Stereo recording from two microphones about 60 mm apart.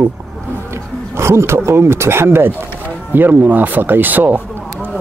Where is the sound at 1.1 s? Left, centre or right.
Right.